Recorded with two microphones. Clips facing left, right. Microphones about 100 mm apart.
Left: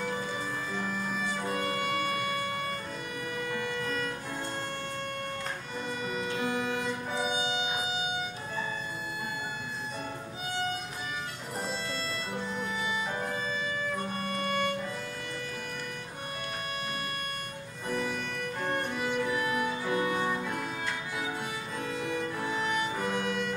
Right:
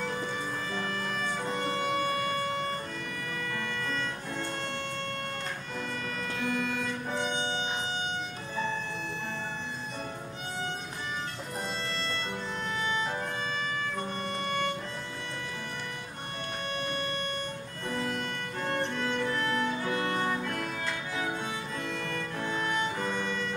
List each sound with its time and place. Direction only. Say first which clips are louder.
0.7 s music: even; 5° left (ahead or behind)
3.5 s vehicle: left 1 dB; 10° left (ahead or behind)
6.1 s music: left 1 dB; 15° left (ahead or behind)
7.1 s music: right 1 dB; 10° left (ahead or behind)
14.1 s music: left 1 dB; 5° left (ahead or behind)
17.9 s music: even; 5° left (ahead or behind)
21.9 s music: left 2 dB; 10° left (ahead or behind)